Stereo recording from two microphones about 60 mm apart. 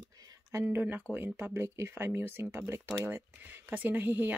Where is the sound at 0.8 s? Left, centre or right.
Right.